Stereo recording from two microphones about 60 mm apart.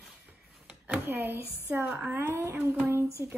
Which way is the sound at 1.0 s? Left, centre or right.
Right.